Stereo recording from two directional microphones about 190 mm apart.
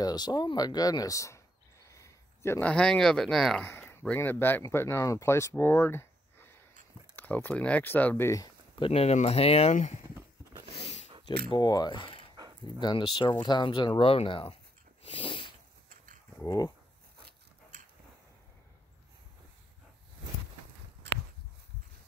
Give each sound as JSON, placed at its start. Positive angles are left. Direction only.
{"t": 0.0, "sound": "speech", "side_deg": 20}
{"t": 8.7, "sound": "speech", "side_deg": 30}
{"t": 10.8, "sound": "sniff", "side_deg": 35}
{"t": 11.4, "sound": "speech", "side_deg": 20}
{"t": 15.0, "sound": "a sound", "side_deg": 25}
{"t": 16.3, "sound": "speech", "side_deg": 15}